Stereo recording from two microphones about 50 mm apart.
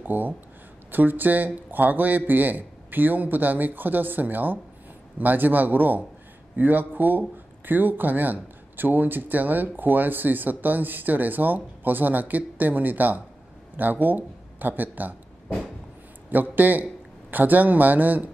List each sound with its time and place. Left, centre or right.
0.0 s speech: right
16.3 s a man's voice: right